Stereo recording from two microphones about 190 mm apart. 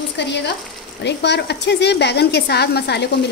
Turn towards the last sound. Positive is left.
turn(degrees=60)  # may be behind; listen again after turning